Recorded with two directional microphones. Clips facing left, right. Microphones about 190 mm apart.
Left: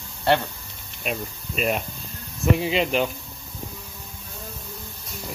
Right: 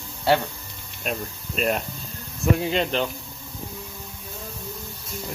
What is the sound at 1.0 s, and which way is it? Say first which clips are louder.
Speech: even; 5° left (ahead or behind).